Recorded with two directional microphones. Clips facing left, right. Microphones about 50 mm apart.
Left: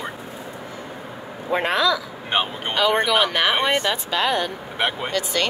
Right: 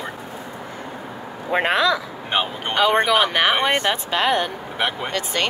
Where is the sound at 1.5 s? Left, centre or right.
Right.